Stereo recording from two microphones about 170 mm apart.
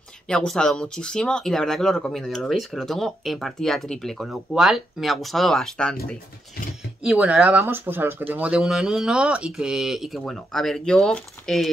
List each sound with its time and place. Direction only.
0.3 s speech: 5° left (ahead or behind)
7.0 s speech: 5° right (ahead or behind)